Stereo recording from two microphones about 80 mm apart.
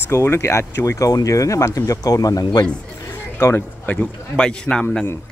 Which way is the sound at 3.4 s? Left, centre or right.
Left.